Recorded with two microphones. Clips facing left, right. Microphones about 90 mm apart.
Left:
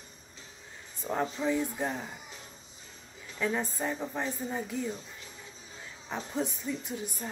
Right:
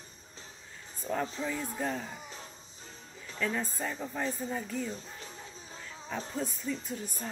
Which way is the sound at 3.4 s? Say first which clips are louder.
Left 2 dB; 20° left (ahead or behind).